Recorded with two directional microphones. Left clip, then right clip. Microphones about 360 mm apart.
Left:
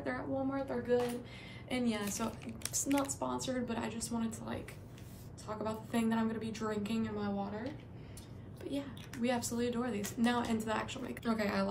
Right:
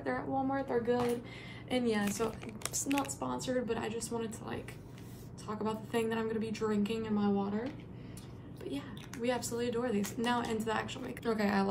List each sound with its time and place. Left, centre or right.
0.0 s a sound: centre
1.7 s speech: centre
2.2 s speech: right
2.7 s speech: centre
8.6 s speech: centre